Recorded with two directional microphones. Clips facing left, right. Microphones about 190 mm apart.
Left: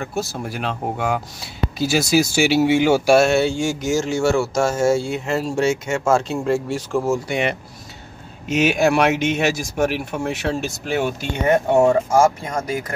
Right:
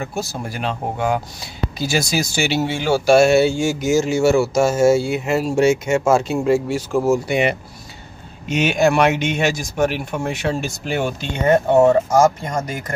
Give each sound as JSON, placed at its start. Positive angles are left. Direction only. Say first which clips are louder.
{"t": 0.0, "sound": "speech", "louder": "even", "side_deg": 0}
{"t": 2.7, "sound": "speech", "louder": "left 4 dB", "side_deg": 20}
{"t": 3.1, "sound": "speech", "louder": "right 7 dB", "side_deg": 0}
{"t": 8.5, "sound": "speech", "louder": "even", "side_deg": 5}